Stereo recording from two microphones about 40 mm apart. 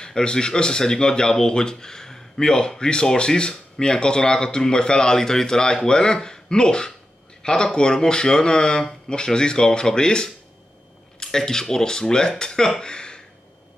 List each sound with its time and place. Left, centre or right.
0.0 s speech: centre